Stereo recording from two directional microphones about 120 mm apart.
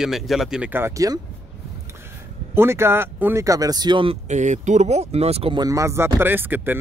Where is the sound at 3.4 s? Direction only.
30° right (ahead or behind).